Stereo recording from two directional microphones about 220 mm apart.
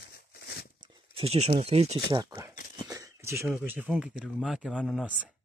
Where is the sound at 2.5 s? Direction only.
40° left (ahead or behind).